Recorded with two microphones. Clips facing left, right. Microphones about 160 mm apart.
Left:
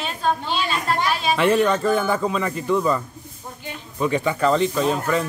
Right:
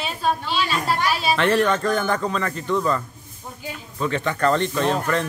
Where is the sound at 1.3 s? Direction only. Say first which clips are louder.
Left 2 dB; 5° left (ahead or behind).